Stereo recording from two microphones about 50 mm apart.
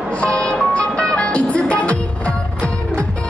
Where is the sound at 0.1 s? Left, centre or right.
Left.